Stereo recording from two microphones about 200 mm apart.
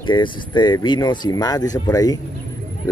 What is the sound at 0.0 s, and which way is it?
Speech, 25° left (ahead or behind).